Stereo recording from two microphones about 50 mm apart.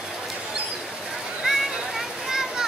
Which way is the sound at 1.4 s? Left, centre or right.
Centre.